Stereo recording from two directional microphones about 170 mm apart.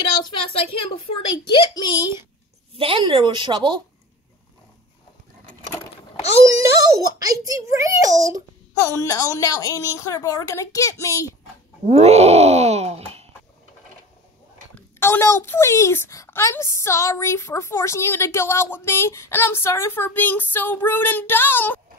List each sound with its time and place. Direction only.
0.2 s a sound: 30° left (ahead or behind)
2.7 s a child's voice: 35° right (ahead or behind)
7.2 s a child's voice: 20° right (ahead or behind)
8.7 s a woman's voice: 20° left (ahead or behind)
11.8 s speech: 40° right (ahead or behind)
15.0 s a woman's voice: 15° left (ahead or behind)